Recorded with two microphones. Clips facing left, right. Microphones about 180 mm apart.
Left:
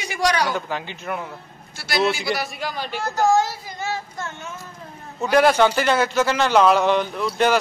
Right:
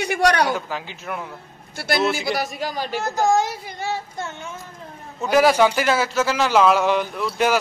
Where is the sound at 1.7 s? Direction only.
55° right (ahead or behind).